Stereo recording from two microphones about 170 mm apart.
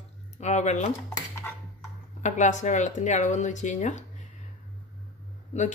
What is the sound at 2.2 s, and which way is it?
Speech, 45° left (ahead or behind).